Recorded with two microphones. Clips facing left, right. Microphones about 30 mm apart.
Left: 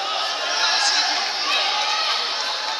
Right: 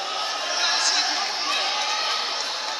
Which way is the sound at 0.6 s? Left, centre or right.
Centre.